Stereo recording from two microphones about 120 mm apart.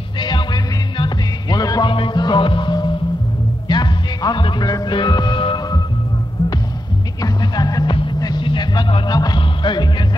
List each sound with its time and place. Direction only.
0.2 s music: 40° left (ahead or behind)
7.2 s music: 30° left (ahead or behind)